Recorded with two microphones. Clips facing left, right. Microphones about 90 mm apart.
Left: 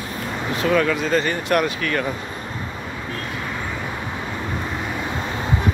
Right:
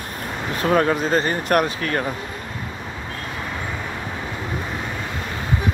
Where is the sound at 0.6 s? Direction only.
40° right (ahead or behind).